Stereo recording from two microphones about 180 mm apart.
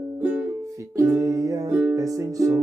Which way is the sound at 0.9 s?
15° right (ahead or behind).